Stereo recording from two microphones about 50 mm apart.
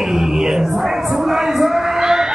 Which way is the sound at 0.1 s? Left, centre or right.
Centre.